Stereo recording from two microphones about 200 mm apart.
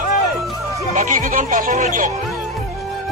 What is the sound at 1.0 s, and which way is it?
Speech, 40° right (ahead or behind).